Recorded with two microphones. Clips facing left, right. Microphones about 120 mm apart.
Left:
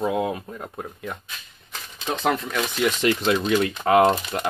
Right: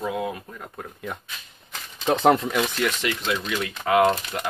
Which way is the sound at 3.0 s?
40° left (ahead or behind).